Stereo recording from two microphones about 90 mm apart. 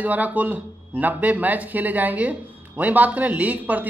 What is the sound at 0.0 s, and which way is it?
Speech, 20° right (ahead or behind).